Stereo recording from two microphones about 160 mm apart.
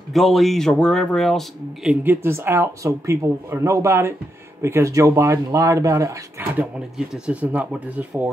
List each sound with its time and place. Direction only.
0.1 s speech: centre (ahead or behind)
1.9 s speech: 15° right (ahead or behind)
7.2 s speech: 10° right (ahead or behind)